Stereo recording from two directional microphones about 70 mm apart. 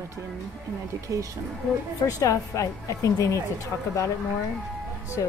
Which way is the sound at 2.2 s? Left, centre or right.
Left.